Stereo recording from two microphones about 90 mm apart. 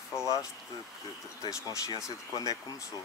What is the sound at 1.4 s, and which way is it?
Speech, 40° left (ahead or behind).